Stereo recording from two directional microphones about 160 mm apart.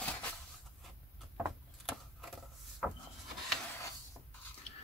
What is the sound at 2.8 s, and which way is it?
Rub, centre (ahead or behind).